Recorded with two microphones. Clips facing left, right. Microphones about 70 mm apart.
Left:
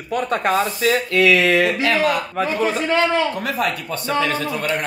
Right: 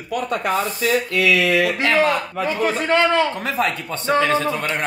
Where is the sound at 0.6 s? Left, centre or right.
Left.